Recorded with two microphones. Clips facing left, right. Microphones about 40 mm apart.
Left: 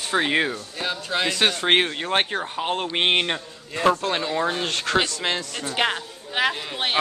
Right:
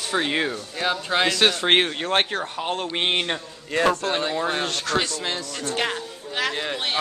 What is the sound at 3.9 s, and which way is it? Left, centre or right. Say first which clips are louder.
Speech: left 1 dB; left.